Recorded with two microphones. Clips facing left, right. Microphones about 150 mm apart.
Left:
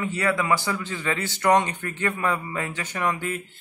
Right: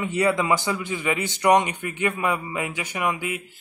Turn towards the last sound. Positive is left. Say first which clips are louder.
# even
turn(degrees=-10)  # may be behind; listen again after turning